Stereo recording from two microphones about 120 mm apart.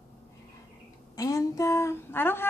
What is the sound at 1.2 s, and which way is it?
Speech, 25° left (ahead or behind).